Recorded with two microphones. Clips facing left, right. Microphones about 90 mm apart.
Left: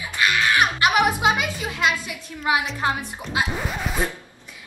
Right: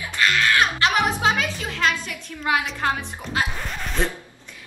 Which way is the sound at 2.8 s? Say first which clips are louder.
Even; 20° left (ahead or behind).